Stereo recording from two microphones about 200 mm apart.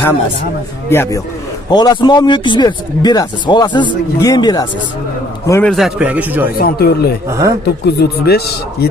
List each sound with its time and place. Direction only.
0.8 s a man's voice: 15° left (ahead or behind)
5.5 s speech: 5° left (ahead or behind)
6.6 s speech: 50° left (ahead or behind)
7.2 s speech: 15° right (ahead or behind)
7.6 s speech: 55° left (ahead or behind)